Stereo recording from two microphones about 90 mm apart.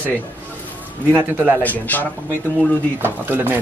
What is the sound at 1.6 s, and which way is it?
Speech, 20° left (ahead or behind).